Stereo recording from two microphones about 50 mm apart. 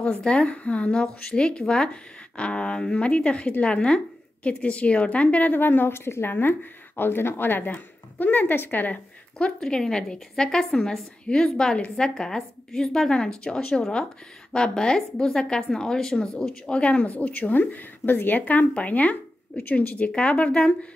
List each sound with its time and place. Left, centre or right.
0.0 s speech: left
6.3 s speech: left
9.4 s a woman's voice: centre